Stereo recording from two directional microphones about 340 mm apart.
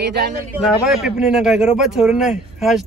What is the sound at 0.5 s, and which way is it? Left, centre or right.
A man's voice, centre.